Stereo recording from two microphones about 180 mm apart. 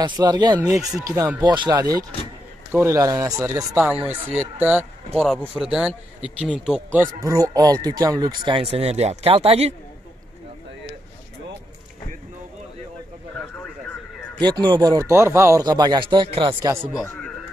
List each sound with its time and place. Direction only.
0.0 s speech: 25° right (ahead or behind)
5.1 s speech: centre (ahead or behind); by 9.8 s 35° right (ahead or behind)
14.5 s speech: 25° right (ahead or behind)